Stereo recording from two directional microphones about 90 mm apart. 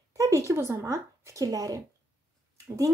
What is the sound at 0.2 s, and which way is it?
Speech, 35° right (ahead or behind).